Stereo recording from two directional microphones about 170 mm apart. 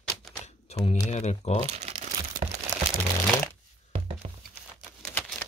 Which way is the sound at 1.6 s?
40° right (ahead or behind).